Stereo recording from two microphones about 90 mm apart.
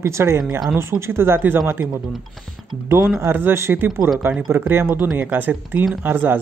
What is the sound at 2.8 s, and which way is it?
Speech, 30° right (ahead or behind).